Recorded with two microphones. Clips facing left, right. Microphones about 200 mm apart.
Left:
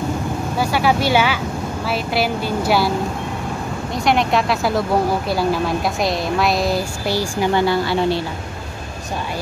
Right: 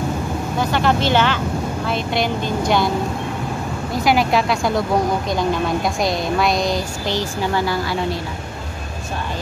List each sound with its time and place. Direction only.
0.6 s a woman's voice: 10° left (ahead or behind)
3.9 s a woman's voice: centre (ahead or behind)
7.5 s speech: 25° left (ahead or behind)